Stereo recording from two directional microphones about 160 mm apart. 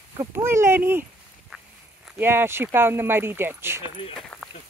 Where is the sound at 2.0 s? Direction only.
15° right (ahead or behind).